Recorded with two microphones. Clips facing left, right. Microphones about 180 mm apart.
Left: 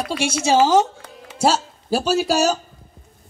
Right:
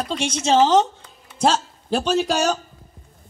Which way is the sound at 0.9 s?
90° left.